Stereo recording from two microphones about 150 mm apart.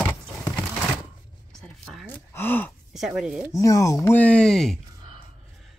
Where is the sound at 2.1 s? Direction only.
15° left (ahead or behind).